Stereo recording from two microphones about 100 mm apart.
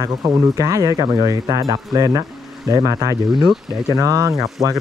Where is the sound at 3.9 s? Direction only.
35° right (ahead or behind).